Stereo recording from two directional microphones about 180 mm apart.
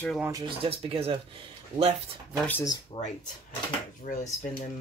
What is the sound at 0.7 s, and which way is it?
Speech, 35° right (ahead or behind).